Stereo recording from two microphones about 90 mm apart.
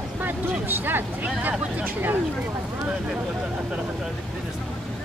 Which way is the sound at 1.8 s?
20° right (ahead or behind).